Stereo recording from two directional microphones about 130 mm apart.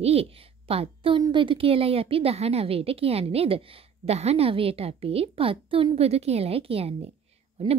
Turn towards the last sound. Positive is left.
turn(degrees=-50)  # may be behind; listen again after turning